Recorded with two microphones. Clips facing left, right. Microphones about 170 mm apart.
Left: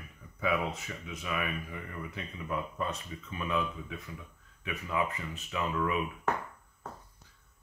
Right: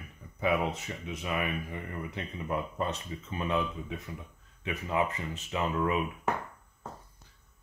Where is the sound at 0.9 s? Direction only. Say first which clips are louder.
Right 3 dB; 20° right (ahead or behind).